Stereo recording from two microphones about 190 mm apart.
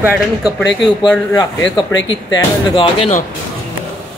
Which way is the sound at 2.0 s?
25° left (ahead or behind).